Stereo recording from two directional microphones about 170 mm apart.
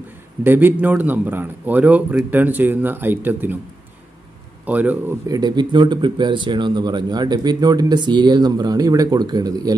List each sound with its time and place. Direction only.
0.4 s a man's voice: 10° right (ahead or behind)
4.6 s a man's voice: 10° right (ahead or behind)
5.3 s speech: 25° right (ahead or behind)